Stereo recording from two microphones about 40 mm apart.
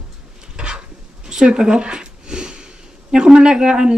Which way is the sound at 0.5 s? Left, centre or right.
Right.